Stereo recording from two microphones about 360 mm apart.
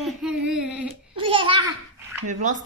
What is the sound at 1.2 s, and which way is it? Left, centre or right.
Babbling, centre.